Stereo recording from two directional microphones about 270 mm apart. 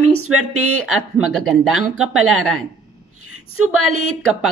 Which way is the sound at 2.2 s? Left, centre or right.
Right.